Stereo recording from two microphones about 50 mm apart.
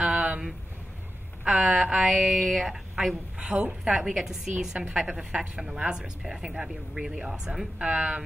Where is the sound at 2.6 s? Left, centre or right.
Centre.